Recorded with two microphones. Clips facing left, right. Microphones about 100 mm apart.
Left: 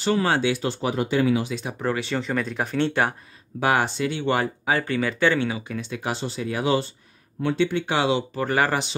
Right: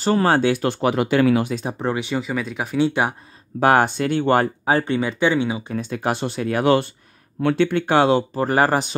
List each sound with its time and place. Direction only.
0.0 s speech: 40° right (ahead or behind)
1.8 s speech: 20° right (ahead or behind)
2.9 s speech: 15° right (ahead or behind)
3.5 s speech: 50° right (ahead or behind); by 5.6 s 15° right (ahead or behind)
5.8 s speech: 45° right (ahead or behind)